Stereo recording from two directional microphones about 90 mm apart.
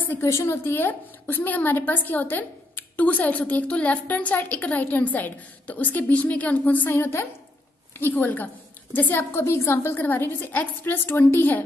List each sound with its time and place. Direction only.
0.1 s a woman's voice: 30° left (ahead or behind)